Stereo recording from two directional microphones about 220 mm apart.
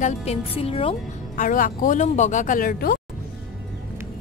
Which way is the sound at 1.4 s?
35° left (ahead or behind).